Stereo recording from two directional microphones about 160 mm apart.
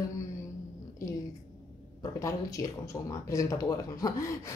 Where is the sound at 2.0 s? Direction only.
20° left (ahead or behind).